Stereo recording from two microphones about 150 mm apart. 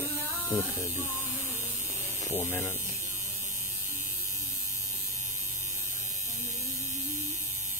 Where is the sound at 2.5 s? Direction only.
15° left (ahead or behind).